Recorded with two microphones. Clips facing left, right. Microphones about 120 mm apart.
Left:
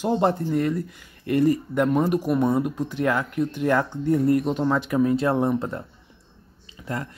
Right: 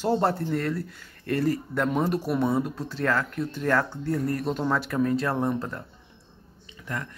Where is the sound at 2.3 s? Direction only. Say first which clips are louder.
Left 3 dB; 5° right (ahead or behind).